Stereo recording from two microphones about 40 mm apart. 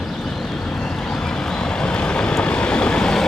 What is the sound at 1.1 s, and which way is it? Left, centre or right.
Vehicle, centre.